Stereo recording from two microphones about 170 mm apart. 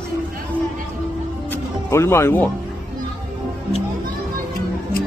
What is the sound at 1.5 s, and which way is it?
Music, 15° left (ahead or behind).